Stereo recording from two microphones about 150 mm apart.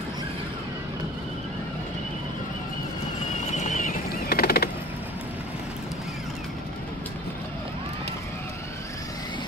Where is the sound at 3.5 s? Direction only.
55° left (ahead or behind); by 4.6 s 90° left.